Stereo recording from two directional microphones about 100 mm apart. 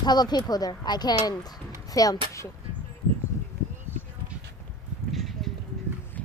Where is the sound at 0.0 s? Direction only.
45° left (ahead or behind).